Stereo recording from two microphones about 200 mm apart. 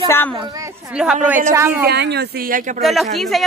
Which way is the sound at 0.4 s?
20° right (ahead or behind).